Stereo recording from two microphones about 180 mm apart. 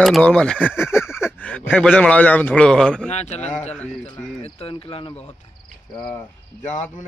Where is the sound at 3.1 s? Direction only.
40° left (ahead or behind).